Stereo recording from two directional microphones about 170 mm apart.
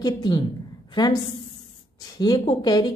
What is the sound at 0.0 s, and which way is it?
A woman's voice, 25° left (ahead or behind).